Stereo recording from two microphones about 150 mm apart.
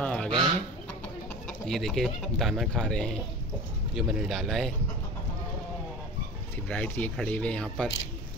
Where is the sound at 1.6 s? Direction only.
5° left (ahead or behind).